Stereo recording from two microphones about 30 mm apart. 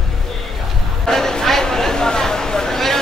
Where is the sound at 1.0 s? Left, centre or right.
Centre.